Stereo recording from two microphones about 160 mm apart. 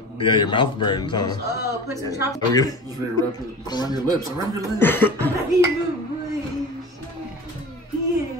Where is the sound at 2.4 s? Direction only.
20° left (ahead or behind).